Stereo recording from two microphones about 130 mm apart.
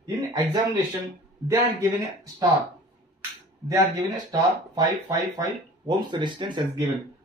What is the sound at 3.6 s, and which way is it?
Speech, 25° right (ahead or behind).